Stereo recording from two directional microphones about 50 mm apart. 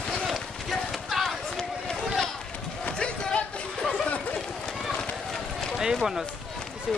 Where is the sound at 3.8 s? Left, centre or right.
Centre.